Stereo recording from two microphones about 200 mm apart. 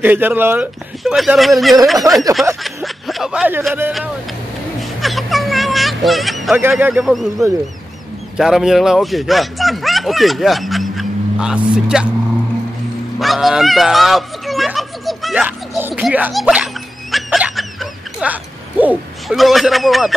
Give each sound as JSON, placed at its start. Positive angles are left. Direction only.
{"t": 0.0, "sound": "speech", "side_deg": -10}
{"t": 2.1, "sound": "snicker", "side_deg": -15}
{"t": 2.6, "sound": "speech", "side_deg": 0}
{"t": 5.0, "sound": "music", "side_deg": 0}
{"t": 6.7, "sound": "speech", "side_deg": -5}
{"t": 13.2, "sound": "a sound", "side_deg": 0}